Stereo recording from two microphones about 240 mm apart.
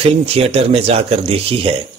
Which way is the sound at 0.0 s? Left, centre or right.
Right.